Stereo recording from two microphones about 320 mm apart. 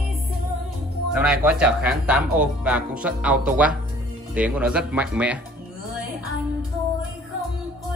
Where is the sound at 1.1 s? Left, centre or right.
Centre.